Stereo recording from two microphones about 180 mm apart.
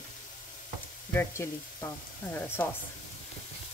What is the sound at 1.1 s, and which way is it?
Speech, 15° left (ahead or behind).